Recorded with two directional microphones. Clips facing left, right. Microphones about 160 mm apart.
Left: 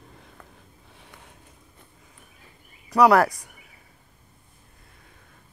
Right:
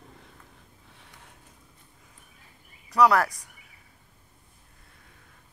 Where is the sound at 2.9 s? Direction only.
65° left (ahead or behind).